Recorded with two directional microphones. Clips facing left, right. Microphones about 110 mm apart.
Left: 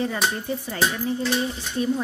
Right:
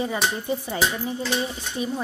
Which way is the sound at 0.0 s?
15° right (ahead or behind).